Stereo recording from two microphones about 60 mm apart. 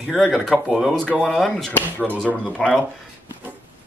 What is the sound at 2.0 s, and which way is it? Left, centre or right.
Speech, right.